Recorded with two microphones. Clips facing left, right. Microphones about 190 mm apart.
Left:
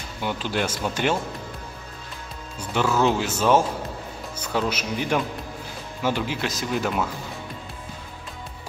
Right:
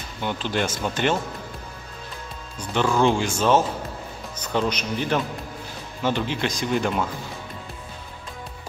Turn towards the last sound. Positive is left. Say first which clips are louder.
# right 2 dB
turn(degrees=5)  # may be behind; listen again after turning